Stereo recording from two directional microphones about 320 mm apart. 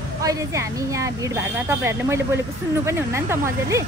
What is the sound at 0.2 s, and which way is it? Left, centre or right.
A woman's voice, centre.